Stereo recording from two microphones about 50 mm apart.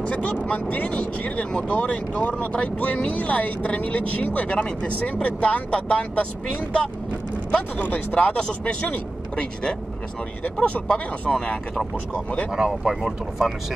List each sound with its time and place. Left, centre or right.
0.0 s speech: left
10.9 s speech: centre
12.4 s speech: centre